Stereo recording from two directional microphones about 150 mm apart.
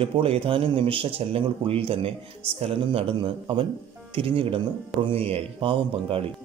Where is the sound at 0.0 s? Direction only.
35° right (ahead or behind).